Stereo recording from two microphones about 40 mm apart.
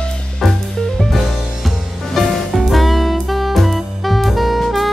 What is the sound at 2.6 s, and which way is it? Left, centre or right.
Saxophone, centre.